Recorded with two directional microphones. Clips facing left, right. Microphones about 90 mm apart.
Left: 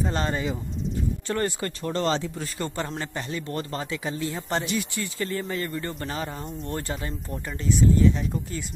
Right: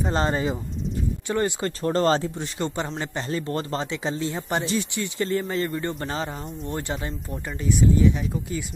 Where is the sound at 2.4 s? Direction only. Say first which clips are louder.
Right 2 dB; 20° right (ahead or behind).